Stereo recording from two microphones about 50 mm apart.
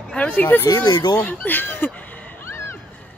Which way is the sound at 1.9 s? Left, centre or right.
Left.